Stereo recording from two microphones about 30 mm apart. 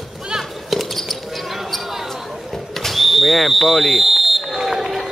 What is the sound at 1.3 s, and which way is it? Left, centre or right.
Basketball bounce, centre.